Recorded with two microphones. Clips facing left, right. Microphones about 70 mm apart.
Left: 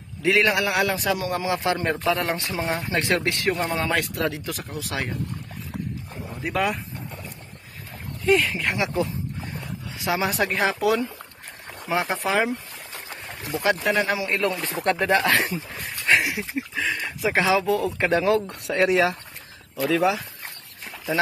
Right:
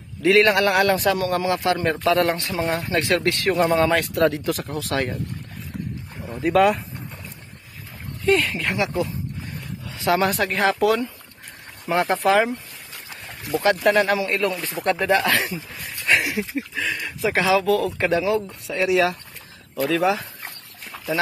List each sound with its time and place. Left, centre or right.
0.2 s speech: centre
0.5 s speech: centre
1.2 s speech: centre
3.5 s speech: centre
6.4 s speech: centre
8.3 s speech: centre
8.5 s speech: left
9.9 s speech: centre
12.9 s a sound: left
13.8 s speech: centre
14.2 s speech: left
18.2 s speech: left
19.8 s speech: centre